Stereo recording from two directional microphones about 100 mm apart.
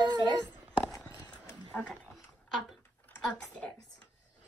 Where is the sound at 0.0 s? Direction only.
50° right (ahead or behind).